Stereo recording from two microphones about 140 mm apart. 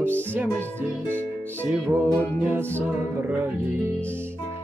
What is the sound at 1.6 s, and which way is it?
Music, 15° right (ahead or behind).